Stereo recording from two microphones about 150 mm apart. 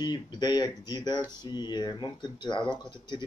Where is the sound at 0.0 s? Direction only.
30° left (ahead or behind).